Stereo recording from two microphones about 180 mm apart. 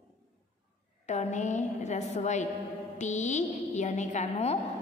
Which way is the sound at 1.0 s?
40° left (ahead or behind).